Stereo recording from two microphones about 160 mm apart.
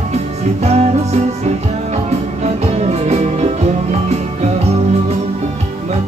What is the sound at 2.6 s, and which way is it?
Music, 45° right (ahead or behind).